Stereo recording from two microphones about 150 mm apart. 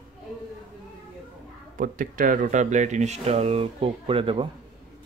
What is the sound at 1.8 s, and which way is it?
Speech, 65° right (ahead or behind).